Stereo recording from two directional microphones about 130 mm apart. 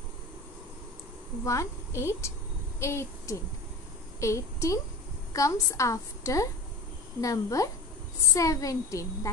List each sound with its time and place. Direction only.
1.4 s a woman's voice: 25° left (ahead or behind)